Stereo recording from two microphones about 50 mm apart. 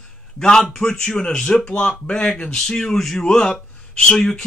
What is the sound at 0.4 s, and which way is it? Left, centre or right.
Speech, centre.